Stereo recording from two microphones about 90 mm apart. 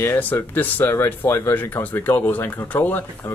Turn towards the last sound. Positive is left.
turn(degrees=20)  # may be behind; listen again after turning